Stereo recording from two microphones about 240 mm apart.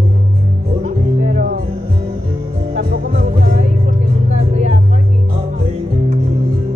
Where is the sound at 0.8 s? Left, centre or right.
Right.